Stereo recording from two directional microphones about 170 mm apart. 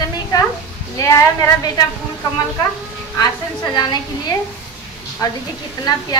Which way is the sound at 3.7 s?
25° left (ahead or behind).